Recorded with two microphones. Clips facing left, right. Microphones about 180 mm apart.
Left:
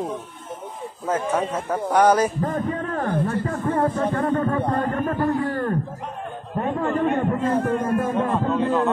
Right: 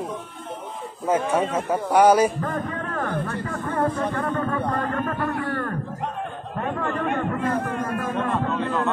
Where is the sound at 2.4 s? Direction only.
25° left (ahead or behind).